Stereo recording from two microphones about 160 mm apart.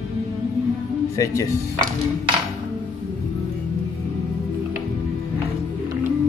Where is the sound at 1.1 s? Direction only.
20° left (ahead or behind).